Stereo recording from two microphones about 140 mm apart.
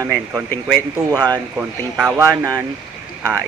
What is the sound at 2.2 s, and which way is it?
Speech, 25° right (ahead or behind).